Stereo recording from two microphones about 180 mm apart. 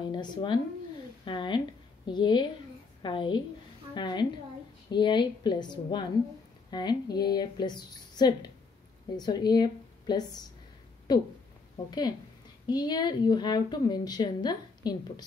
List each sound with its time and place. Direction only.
0.1 s a woman's voice: 25° left (ahead or behind)
12.6 s a woman's voice: 25° left (ahead or behind)